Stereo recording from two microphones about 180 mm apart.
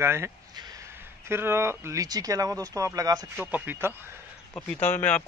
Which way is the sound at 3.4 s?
10° right (ahead or behind).